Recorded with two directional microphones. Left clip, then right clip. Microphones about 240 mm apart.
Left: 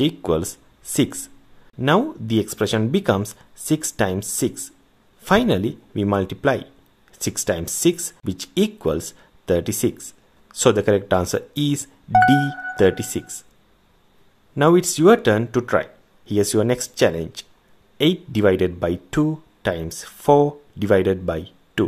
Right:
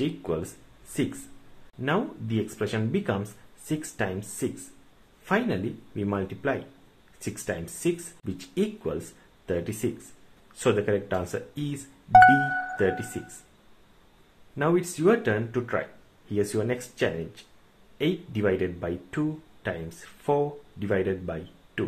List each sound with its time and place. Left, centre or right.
0.0 s speech: left
1.8 s speech: left
14.5 s speech: left